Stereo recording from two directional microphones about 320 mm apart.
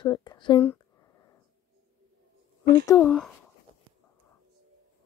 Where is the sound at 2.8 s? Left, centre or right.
Centre.